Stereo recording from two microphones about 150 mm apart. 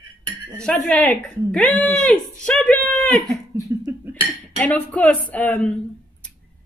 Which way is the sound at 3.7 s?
20° right (ahead or behind).